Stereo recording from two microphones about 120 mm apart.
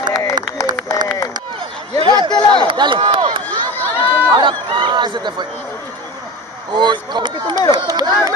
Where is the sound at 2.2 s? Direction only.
35° left (ahead or behind).